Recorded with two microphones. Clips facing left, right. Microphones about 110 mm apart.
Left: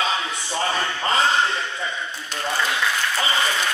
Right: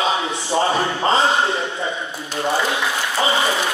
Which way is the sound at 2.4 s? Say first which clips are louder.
Right 4 dB; 25° right (ahead or behind).